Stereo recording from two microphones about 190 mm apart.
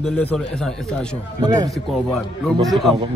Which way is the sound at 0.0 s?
5° left (ahead or behind).